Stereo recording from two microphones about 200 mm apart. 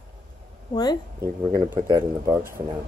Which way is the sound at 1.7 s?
20° right (ahead or behind).